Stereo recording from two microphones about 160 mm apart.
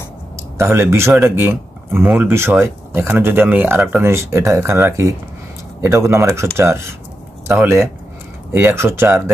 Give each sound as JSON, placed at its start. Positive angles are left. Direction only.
{"t": 0.6, "sound": "speech", "side_deg": -15}